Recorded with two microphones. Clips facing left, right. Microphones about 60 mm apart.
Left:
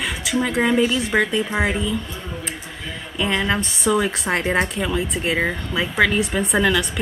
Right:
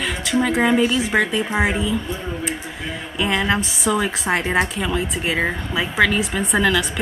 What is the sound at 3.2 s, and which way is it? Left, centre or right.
Speech, centre.